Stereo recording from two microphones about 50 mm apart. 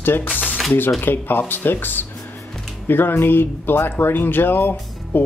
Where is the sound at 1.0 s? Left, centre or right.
Left.